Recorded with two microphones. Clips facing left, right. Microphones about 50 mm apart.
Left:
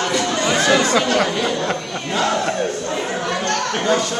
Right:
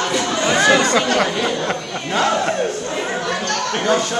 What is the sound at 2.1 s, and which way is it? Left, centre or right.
Battle cry, right.